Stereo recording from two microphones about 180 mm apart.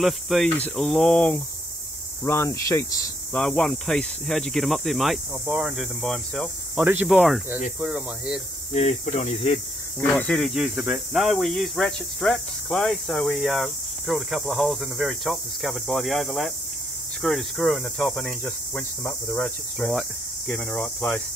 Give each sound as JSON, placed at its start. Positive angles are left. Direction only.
{"t": 0.0, "sound": "speech", "side_deg": 0}
{"t": 2.2, "sound": "snake", "side_deg": 15}
{"t": 3.3, "sound": "speech", "side_deg": 5}
{"t": 6.8, "sound": "speech", "side_deg": -10}
{"t": 8.7, "sound": "speech", "side_deg": 40}
{"t": 9.9, "sound": "speech", "side_deg": 10}
{"t": 20.5, "sound": "snake", "side_deg": 5}